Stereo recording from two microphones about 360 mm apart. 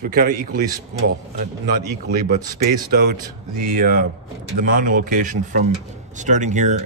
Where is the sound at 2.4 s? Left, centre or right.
Right.